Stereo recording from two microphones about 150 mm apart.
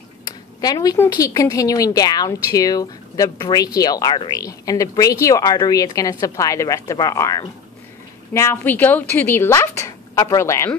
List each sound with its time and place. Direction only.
0.2 s speech: 25° left (ahead or behind)